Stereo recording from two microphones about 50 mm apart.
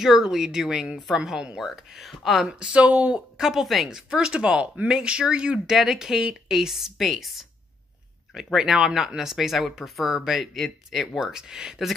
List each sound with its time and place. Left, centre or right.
0.0 s speech: centre
2.4 s speech: right
3.3 s speech: centre
3.9 s speech: centre